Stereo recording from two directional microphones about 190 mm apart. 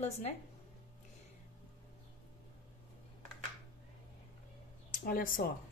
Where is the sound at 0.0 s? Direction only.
35° left (ahead or behind).